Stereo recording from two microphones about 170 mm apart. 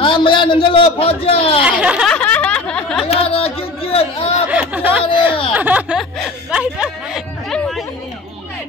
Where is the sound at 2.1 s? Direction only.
10° left (ahead or behind).